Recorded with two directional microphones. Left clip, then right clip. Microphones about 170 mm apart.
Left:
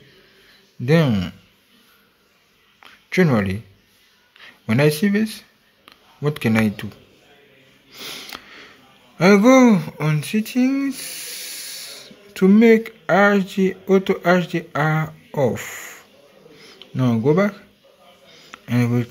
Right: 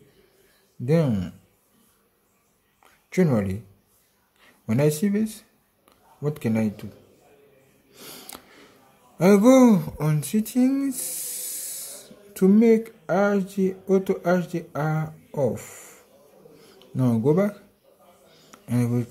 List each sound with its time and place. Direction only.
0.8 s speech: 5° right (ahead or behind)
2.8 s a sound: 10° right (ahead or behind)
4.4 s speech: 10° right (ahead or behind)
8.0 s sniff: 10° right (ahead or behind)
9.2 s speech: 15° right (ahead or behind)